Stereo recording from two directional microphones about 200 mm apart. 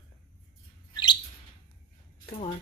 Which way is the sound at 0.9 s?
25° left (ahead or behind).